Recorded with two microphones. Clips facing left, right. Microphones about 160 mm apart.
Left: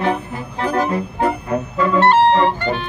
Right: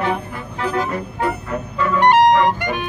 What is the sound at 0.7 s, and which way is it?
Music, 40° left (ahead or behind).